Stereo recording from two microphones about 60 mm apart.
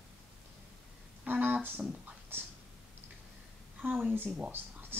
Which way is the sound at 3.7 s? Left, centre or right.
Right.